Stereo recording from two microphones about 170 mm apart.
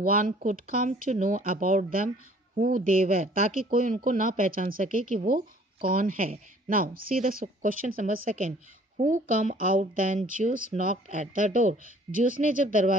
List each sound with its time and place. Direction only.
0.0 s speech: 55° right (ahead or behind)